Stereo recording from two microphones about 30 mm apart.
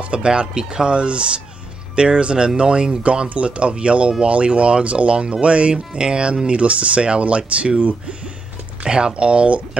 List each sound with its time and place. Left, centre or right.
0.0 s music: right
0.3 s speech: right
3.3 s speech: right
6.4 s speech: right
8.8 s speech: right
9.1 s speech: right